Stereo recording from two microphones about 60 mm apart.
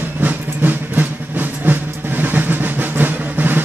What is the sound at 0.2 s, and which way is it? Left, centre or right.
Music, right.